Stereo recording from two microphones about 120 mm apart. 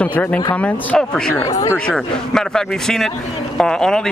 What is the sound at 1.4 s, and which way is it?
Speech, 30° left (ahead or behind).